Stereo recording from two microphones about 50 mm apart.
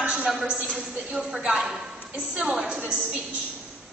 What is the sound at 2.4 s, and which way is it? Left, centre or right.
Speech, centre.